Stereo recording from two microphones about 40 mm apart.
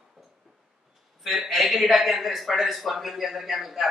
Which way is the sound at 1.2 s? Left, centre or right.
Centre.